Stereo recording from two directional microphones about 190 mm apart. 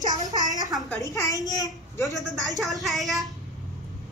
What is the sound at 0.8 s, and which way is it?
A woman's voice, 15° left (ahead or behind).